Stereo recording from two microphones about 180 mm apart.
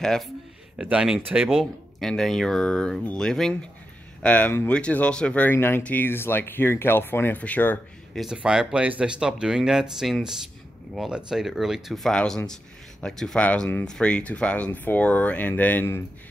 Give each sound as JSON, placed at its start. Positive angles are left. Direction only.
{"t": 0.0, "sound": "speech", "side_deg": 5}
{"t": 8.2, "sound": "speech", "side_deg": -5}